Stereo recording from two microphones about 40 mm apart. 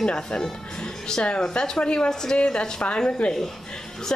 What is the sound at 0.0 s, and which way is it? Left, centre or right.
A woman's voice, centre.